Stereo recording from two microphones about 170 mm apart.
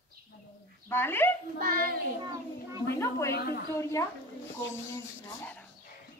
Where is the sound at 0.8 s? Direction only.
10° left (ahead or behind).